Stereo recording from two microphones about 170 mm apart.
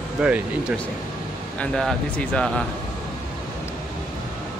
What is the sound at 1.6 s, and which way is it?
Speech, 5° left (ahead or behind).